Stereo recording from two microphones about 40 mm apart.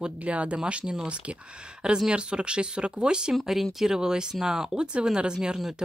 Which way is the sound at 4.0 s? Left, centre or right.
Centre.